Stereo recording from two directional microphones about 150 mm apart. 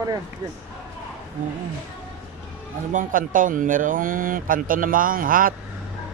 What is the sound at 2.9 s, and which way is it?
Speech, 60° right (ahead or behind).